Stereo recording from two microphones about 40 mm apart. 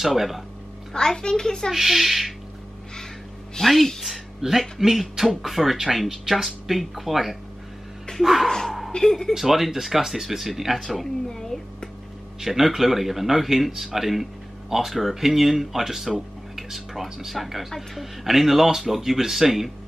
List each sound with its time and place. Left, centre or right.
0.0 s speech: centre
0.9 s a child's voice: centre
1.7 s speech: centre
3.6 s speech: centre
8.5 s speech: centre
9.3 s speech: centre
11.2 s a child's voice: centre
12.4 s speech: centre